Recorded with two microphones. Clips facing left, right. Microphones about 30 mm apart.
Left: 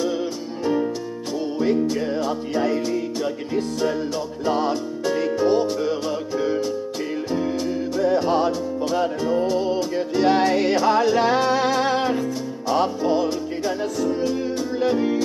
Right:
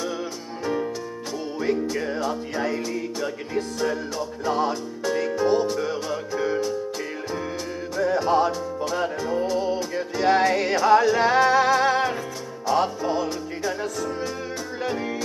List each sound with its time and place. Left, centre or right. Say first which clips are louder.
0.0 s music: left 5 dB; centre
7.3 s music: left 9 dB; centre
9.9 s music: left 1 dB; centre
14.8 s music: left 7 dB; centre